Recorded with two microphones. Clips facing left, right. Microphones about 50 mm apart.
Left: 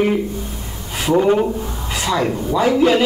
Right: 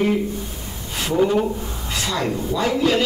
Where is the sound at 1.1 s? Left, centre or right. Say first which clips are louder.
Left 4 dB; left.